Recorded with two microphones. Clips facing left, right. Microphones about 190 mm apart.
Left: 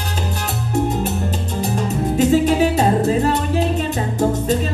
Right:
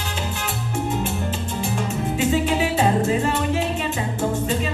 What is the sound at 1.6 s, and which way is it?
Music, 40° left (ahead or behind).